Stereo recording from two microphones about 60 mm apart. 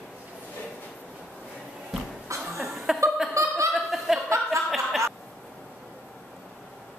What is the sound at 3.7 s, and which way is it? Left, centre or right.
Chuckle, centre.